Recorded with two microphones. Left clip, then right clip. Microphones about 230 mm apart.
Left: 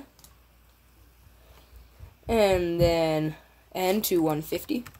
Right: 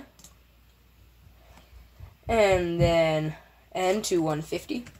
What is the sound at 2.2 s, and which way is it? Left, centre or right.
Speech, left.